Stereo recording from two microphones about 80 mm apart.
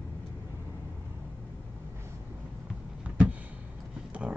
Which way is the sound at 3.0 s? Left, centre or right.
Centre.